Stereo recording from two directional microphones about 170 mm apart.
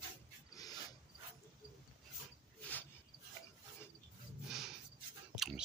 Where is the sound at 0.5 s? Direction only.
20° left (ahead or behind).